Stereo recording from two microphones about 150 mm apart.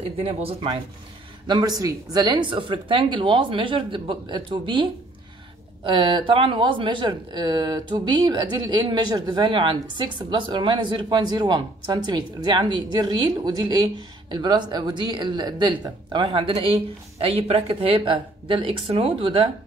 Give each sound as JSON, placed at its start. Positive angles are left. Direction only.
{"t": 0.2, "sound": "speech", "side_deg": -40}
{"t": 1.5, "sound": "speech", "side_deg": -25}